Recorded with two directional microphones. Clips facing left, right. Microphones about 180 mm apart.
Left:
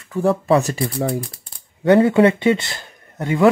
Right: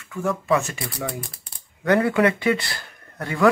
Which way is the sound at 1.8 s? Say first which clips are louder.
Left 6 dB; 25° left (ahead or behind).